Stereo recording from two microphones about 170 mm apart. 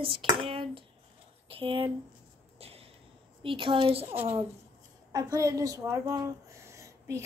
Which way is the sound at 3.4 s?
30° right (ahead or behind).